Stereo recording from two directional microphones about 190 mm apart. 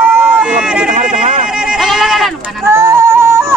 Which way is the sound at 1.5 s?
5° right (ahead or behind).